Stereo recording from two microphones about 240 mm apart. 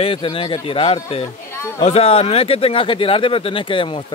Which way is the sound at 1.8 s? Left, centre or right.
Left.